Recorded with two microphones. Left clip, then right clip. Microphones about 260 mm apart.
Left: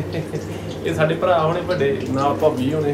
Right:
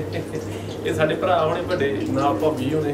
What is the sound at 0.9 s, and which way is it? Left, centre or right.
Speech, centre.